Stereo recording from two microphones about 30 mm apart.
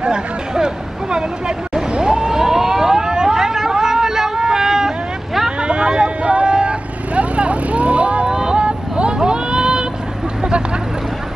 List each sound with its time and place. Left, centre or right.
0.0 s vehicle: right
1.8 s vehicle: right
5.6 s vehicle: right
8.3 s vehicle: right